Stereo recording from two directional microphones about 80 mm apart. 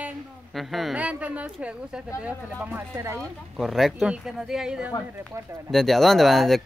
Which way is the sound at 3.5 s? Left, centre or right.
Centre.